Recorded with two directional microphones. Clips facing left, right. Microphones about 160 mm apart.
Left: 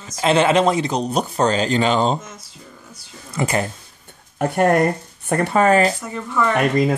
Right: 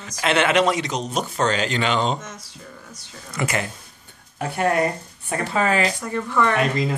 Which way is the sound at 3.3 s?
30° left (ahead or behind).